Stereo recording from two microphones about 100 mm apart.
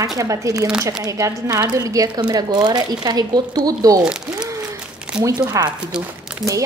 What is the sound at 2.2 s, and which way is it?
A woman's voice, 50° right (ahead or behind).